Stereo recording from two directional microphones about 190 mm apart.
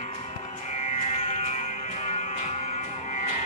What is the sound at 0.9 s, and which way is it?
Music, 35° left (ahead or behind).